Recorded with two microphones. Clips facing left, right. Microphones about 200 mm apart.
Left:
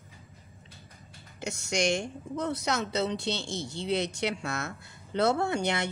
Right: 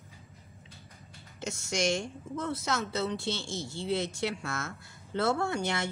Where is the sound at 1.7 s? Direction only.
15° left (ahead or behind).